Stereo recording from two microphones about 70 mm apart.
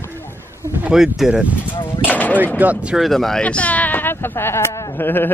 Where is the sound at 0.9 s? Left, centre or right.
Centre.